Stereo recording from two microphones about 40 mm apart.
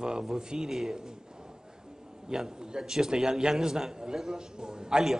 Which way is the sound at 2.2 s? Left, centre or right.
Centre.